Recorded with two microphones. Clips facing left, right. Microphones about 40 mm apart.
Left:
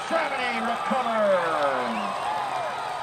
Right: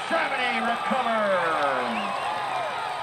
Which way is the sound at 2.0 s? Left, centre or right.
Right.